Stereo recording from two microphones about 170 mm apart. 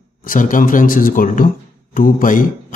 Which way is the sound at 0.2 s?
50° left (ahead or behind).